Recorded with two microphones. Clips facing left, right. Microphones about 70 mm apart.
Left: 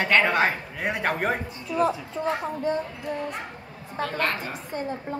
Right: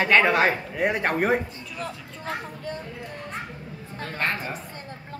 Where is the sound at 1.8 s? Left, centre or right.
Left.